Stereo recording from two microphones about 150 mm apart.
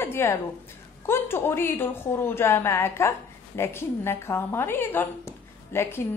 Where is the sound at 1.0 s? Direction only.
15° left (ahead or behind).